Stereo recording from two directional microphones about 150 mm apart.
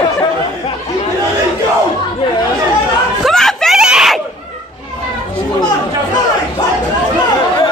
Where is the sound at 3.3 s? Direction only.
Centre (ahead or behind).